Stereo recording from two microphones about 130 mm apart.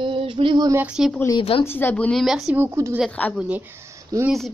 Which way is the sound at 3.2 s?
10° left (ahead or behind).